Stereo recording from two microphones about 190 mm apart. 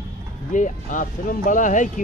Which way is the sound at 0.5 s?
40° left (ahead or behind).